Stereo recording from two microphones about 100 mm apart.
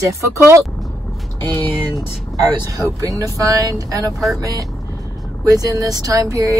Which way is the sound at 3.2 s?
35° right (ahead or behind).